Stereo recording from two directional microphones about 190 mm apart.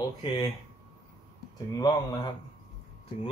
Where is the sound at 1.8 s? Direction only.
20° left (ahead or behind).